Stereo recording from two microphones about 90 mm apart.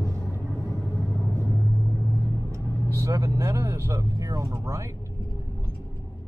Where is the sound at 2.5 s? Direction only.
30° right (ahead or behind).